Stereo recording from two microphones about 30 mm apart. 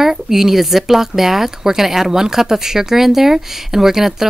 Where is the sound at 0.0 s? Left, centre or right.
Centre.